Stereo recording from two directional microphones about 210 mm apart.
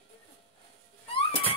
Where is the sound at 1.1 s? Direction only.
25° left (ahead or behind).